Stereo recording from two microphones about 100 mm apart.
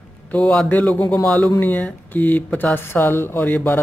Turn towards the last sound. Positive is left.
turn(degrees=20)  # may be behind; listen again after turning